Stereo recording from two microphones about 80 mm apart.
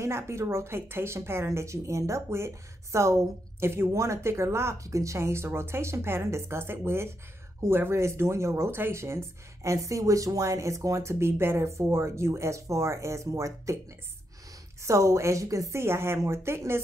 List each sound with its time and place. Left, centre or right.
0.0 s speech: right
14.8 s speech: right